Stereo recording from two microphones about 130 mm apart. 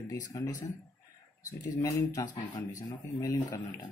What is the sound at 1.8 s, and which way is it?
Speech, 25° left (ahead or behind).